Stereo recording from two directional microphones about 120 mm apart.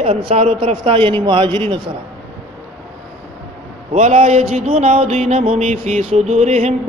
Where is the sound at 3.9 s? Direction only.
75° right (ahead or behind).